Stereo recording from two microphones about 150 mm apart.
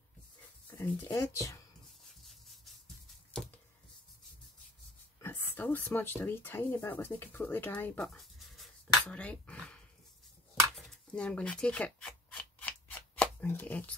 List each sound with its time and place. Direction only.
0.7 s speech: 20° left (ahead or behind)
5.2 s speech: 15° left (ahead or behind)
10.9 s scissors: 5° left (ahead or behind)